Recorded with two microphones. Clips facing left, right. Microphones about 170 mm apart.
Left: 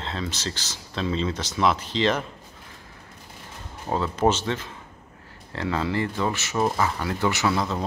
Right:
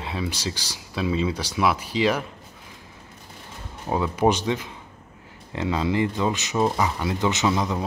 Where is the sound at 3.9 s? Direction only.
15° right (ahead or behind).